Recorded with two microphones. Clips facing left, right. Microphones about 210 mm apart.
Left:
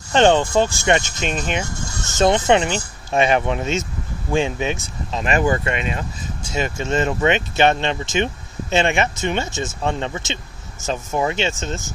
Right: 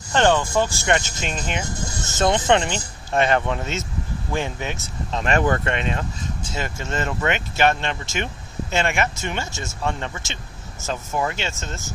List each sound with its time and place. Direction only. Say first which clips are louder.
0.1 s speech: left 4 dB; 20° left (ahead or behind)
4.8 s speech: left 1 dB; 5° left (ahead or behind)